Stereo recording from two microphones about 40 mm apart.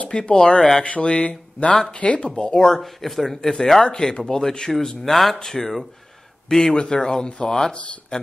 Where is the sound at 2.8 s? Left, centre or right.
Centre.